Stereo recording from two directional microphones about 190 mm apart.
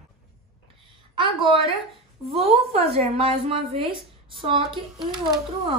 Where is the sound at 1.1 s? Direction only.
25° right (ahead or behind).